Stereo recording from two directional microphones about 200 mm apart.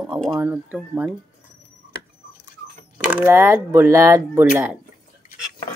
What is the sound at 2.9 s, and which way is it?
Speech, 5° right (ahead or behind).